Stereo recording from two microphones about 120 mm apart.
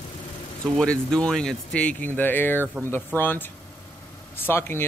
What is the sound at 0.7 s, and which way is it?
Speech, 5° left (ahead or behind).